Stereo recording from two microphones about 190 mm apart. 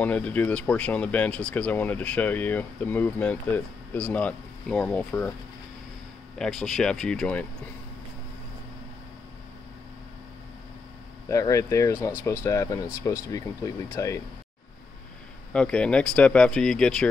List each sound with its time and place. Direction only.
0.0 s speech: 10° left (ahead or behind)
6.3 s speech: centre (ahead or behind)
11.2 s speech: 15° left (ahead or behind)
15.5 s speech: 5° left (ahead or behind)